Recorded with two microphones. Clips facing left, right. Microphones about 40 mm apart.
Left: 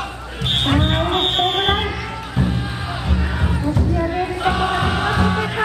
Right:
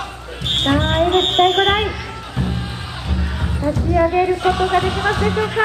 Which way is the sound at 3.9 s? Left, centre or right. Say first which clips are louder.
Right 6 dB; centre.